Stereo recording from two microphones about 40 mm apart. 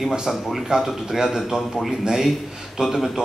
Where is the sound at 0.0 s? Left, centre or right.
Centre.